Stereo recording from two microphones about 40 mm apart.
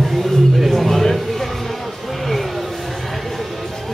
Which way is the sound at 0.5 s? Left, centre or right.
Centre.